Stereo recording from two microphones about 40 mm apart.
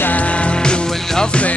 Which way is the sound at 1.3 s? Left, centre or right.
Left.